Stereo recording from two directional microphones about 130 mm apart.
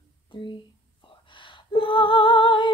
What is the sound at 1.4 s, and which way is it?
Female singing, 40° left (ahead or behind).